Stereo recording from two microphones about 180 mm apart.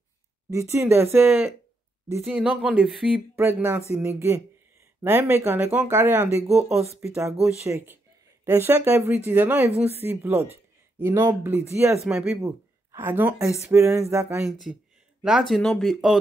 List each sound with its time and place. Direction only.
0.5 s speech: 15° right (ahead or behind); by 3.2 s centre (ahead or behind)
3.3 s speech: 10° right (ahead or behind)
12.0 s speech: 5° right (ahead or behind)
12.4 s speech: 15° right (ahead or behind)
15.2 s speech: centre (ahead or behind)